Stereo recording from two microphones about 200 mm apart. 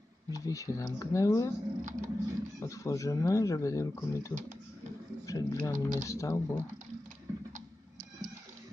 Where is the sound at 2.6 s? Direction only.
15° left (ahead or behind).